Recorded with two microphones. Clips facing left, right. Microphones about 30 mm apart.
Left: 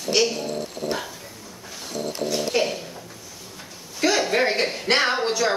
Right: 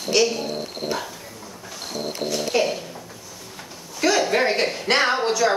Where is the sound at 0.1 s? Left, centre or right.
Centre.